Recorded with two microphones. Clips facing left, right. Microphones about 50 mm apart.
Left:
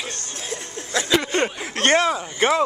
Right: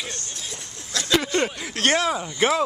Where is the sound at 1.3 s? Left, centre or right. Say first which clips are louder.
Left 1 dB; left.